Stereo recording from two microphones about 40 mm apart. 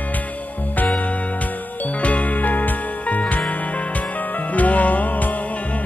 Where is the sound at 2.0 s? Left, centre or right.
Left.